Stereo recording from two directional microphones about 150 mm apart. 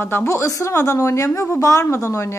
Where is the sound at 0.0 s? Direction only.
15° left (ahead or behind).